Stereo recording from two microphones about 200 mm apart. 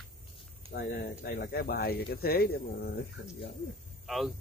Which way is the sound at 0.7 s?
55° left (ahead or behind).